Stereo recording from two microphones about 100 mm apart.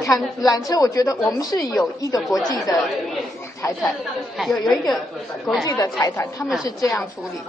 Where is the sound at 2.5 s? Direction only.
35° left (ahead or behind).